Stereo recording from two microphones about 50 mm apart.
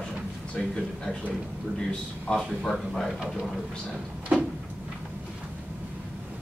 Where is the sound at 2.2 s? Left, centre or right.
Centre.